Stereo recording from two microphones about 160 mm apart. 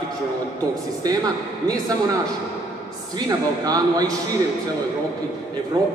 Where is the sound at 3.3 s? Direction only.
25° right (ahead or behind).